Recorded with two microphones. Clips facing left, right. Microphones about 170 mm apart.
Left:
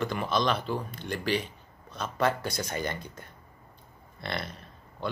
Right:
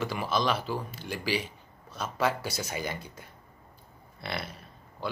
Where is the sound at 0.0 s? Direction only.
5° right (ahead or behind).